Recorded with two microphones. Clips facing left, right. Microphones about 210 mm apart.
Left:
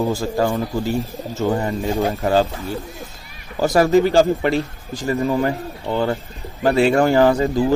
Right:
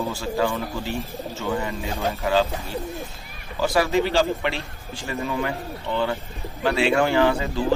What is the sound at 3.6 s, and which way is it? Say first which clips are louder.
Speech: left 6 dB; 45° left (ahead or behind).